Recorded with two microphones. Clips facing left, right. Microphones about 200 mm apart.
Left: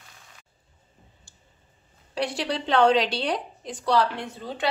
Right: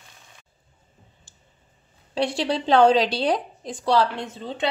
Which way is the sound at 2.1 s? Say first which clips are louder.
Right 4 dB; 25° right (ahead or behind).